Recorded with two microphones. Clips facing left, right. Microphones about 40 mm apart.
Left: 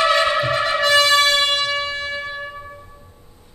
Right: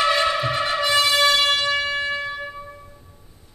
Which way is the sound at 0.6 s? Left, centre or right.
Centre.